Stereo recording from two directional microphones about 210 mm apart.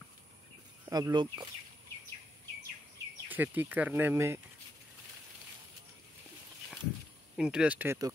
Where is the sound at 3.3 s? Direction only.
10° right (ahead or behind).